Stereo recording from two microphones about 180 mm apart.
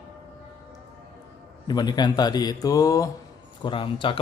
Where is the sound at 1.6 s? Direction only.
25° left (ahead or behind).